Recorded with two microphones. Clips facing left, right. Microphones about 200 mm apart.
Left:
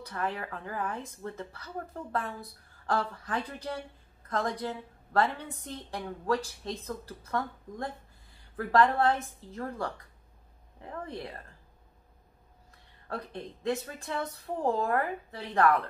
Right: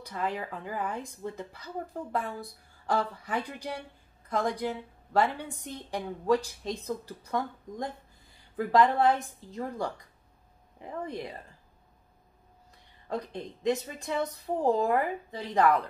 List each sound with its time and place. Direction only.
0.0 s a woman's voice: 15° right (ahead or behind)
13.1 s a woman's voice: 15° right (ahead or behind)